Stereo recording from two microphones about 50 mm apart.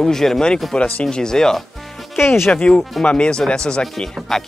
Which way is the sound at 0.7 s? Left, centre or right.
Left.